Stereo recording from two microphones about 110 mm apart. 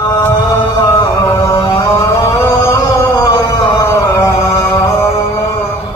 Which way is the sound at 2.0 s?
25° left (ahead or behind).